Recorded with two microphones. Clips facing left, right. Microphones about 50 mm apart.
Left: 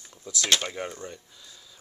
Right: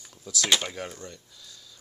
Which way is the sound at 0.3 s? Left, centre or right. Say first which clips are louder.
Even; centre.